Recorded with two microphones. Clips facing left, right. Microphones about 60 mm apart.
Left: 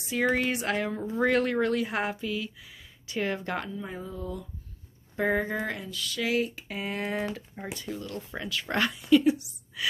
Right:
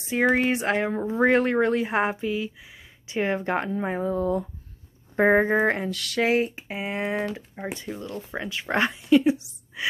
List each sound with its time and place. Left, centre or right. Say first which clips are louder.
0.0 s a woman's voice: right 5 dB; right
3.7 s speech: right 11 dB; right
5.9 s speech: right 7 dB; right
6.2 s a woman's voice: right 5 dB; right